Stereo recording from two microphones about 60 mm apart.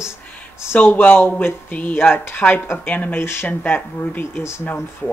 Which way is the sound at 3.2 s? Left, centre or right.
Left.